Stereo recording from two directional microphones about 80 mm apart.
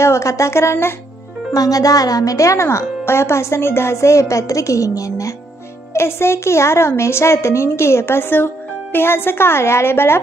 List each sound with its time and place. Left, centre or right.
0.0 s speech: left
1.5 s speech: left
5.9 s a woman's voice: left